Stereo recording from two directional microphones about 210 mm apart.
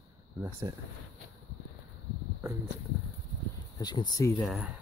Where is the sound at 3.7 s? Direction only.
20° left (ahead or behind).